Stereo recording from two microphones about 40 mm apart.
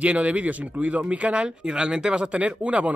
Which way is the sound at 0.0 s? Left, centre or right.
Right.